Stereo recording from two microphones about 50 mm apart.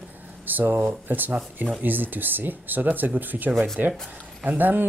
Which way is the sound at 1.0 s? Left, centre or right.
Right.